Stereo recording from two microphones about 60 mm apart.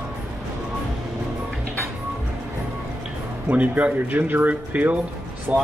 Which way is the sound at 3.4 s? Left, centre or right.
Right.